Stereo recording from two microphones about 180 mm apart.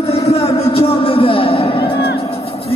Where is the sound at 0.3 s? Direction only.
35° left (ahead or behind).